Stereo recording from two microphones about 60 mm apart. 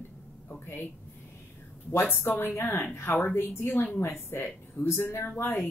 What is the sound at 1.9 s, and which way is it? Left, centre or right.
A woman's voice, left.